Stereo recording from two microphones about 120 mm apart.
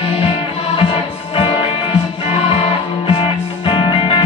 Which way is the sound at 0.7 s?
50° left (ahead or behind).